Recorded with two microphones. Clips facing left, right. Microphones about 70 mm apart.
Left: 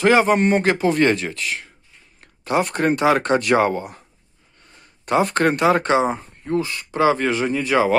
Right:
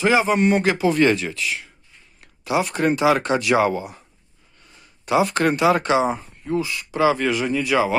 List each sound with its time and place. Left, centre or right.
0.0 s speech: left
5.0 s speech: left